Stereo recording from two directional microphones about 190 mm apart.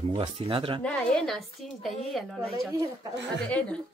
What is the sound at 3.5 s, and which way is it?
Speech, 5° left (ahead or behind).